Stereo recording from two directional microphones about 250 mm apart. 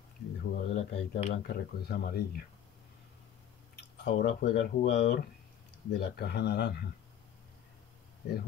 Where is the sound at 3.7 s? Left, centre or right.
Left.